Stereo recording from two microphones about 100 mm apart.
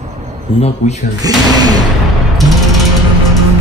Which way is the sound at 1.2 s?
40° right (ahead or behind).